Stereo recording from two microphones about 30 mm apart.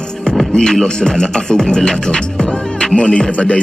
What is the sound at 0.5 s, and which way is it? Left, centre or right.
Speech, left.